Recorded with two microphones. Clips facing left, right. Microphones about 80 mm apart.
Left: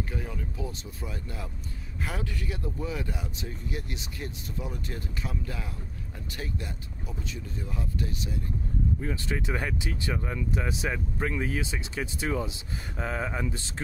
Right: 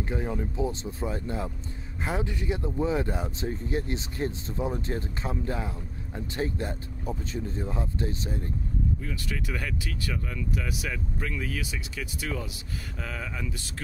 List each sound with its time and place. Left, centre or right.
0.1 s speech: right
9.0 s speech: left